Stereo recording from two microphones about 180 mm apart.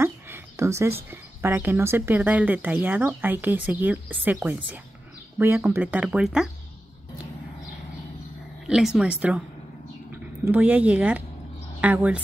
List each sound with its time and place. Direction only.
0.0 s a woman's voice: 15° right (ahead or behind)
8.6 s speech: 5° right (ahead or behind)
10.4 s a woman's voice: 10° right (ahead or behind)